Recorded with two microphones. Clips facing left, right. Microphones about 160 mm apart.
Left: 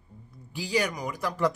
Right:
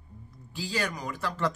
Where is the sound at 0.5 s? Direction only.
15° left (ahead or behind).